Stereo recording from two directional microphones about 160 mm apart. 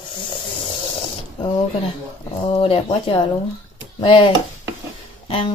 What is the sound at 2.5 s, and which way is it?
Speech, 35° left (ahead or behind).